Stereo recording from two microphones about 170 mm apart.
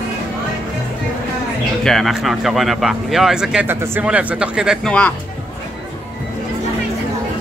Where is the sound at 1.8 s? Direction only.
Centre (ahead or behind).